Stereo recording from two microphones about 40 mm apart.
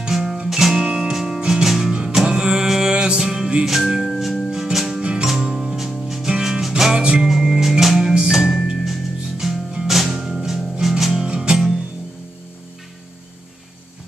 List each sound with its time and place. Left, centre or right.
0.1 s music: centre
0.8 s music: centre
1.1 s music: centre
3.6 s music: centre
4.5 s music: centre
6.3 s music: centre
11.2 s music: centre